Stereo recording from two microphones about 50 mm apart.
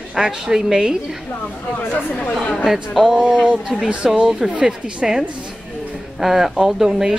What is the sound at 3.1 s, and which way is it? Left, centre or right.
A woman's voice, centre.